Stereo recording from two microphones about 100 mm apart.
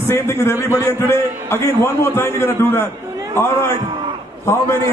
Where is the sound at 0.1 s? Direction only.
25° left (ahead or behind).